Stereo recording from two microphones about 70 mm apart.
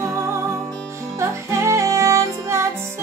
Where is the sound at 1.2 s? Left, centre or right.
Right.